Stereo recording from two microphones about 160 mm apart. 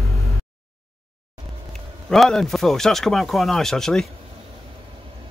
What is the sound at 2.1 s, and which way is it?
Speech, 5° left (ahead or behind).